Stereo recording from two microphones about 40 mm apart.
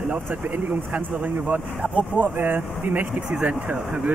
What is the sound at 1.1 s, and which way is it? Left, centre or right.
Speech, right.